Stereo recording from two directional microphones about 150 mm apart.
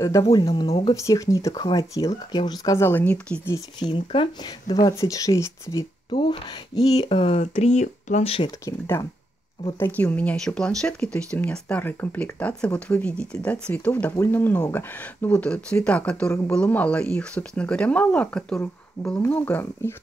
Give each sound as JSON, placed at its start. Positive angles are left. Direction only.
{"t": 0.3, "sound": "speech", "side_deg": 25}
{"t": 0.9, "sound": "speech", "side_deg": 20}
{"t": 3.9, "sound": "speech", "side_deg": 35}
{"t": 6.1, "sound": "speech", "side_deg": 30}
{"t": 7.1, "sound": "speech", "side_deg": 40}
{"t": 8.5, "sound": "speech", "side_deg": 20}